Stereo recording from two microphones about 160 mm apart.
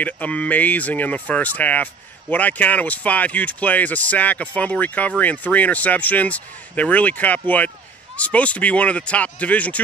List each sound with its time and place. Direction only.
0.0 s speech: 10° left (ahead or behind)